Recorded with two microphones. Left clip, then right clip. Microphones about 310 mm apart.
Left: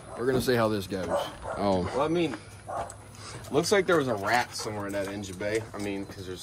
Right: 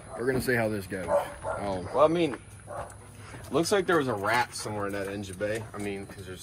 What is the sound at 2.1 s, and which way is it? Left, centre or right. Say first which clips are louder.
Speech: right 1 dB; centre.